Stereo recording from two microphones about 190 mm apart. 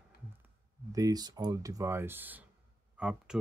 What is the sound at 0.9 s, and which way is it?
Speech, 20° right (ahead or behind).